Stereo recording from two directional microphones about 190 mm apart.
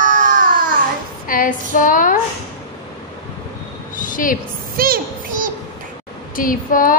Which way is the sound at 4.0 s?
45° left (ahead or behind).